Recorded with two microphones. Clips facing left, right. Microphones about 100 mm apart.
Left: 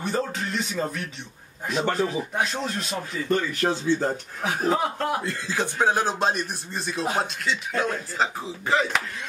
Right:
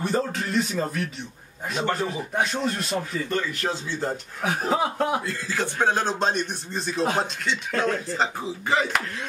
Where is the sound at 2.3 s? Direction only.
Centre (ahead or behind).